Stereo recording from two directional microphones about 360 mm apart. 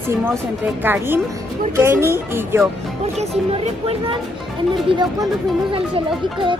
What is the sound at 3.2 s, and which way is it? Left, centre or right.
Speech, centre.